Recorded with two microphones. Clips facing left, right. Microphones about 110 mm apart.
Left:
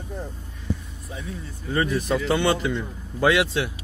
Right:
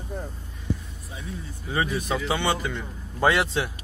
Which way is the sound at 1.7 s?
10° right (ahead or behind).